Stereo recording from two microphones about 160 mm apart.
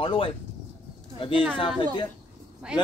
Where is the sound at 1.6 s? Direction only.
30° left (ahead or behind).